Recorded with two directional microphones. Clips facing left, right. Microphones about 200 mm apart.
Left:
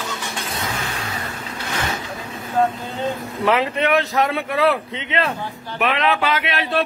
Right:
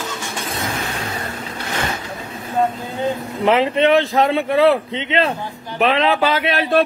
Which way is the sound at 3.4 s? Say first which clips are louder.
Right 4 dB; 25° right (ahead or behind).